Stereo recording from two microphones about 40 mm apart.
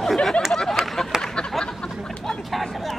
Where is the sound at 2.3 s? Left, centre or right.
Centre.